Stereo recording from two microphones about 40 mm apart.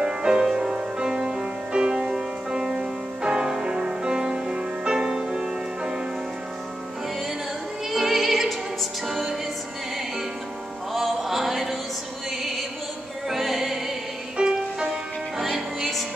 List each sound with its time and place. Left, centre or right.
0.0 s music: right
7.9 s music: centre
10.9 s music: centre
13.3 s music: centre
14.3 s music: right
14.9 s music: centre